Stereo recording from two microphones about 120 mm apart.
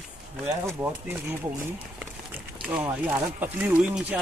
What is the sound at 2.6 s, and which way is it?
Speech, 10° right (ahead or behind).